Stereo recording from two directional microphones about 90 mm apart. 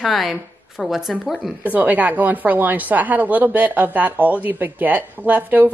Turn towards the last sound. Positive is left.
turn(degrees=-20)  # may be behind; listen again after turning